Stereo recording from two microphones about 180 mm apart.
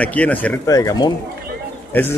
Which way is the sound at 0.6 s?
20° left (ahead or behind).